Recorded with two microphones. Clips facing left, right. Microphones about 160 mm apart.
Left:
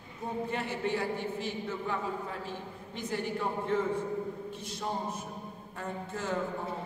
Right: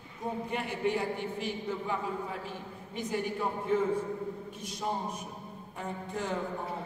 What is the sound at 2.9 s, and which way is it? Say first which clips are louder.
Speech: right 1 dB; 10° right (ahead or behind).